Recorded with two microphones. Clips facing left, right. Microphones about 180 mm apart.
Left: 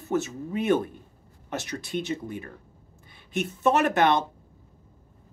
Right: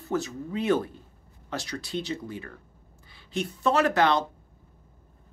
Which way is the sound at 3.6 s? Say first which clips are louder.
Left 1 dB; 20° left (ahead or behind).